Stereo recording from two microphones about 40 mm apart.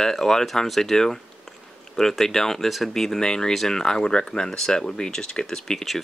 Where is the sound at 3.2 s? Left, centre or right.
Centre.